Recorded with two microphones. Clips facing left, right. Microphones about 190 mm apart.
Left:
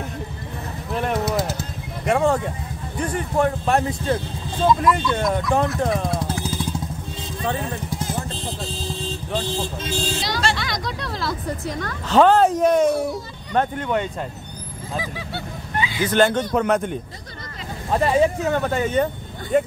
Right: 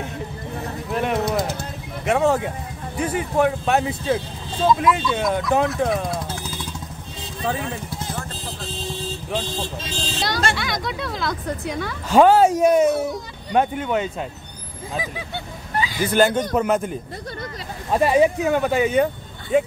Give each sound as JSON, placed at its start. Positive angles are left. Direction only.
{"t": 1.0, "sound": "a sound", "side_deg": 0}
{"t": 2.0, "sound": "speech", "side_deg": 0}
{"t": 10.2, "sound": "speech", "side_deg": -50}
{"t": 10.6, "sound": "speech", "side_deg": 0}
{"t": 12.1, "sound": "speech", "side_deg": -10}
{"t": 15.7, "sound": "vehicle", "side_deg": -35}
{"t": 16.1, "sound": "speech", "side_deg": -10}